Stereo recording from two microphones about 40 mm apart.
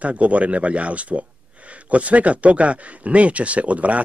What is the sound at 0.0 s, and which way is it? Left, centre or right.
Speech, right.